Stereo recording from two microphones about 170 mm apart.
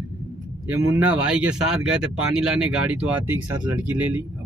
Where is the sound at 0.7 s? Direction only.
10° right (ahead or behind).